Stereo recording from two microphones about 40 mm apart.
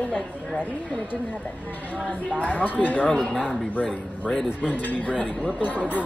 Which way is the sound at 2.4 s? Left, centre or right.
Left.